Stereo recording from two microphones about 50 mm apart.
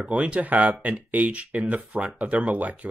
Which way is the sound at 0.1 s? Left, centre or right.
Right.